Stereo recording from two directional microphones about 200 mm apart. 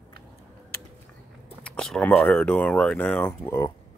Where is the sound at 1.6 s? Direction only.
5° left (ahead or behind).